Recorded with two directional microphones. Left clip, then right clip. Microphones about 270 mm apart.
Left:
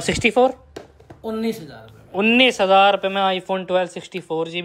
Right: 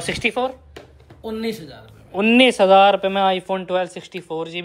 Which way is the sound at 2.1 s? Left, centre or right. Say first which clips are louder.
Right 1 dB; centre.